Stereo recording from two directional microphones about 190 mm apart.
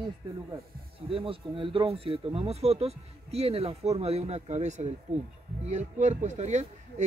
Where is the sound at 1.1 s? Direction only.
30° right (ahead or behind).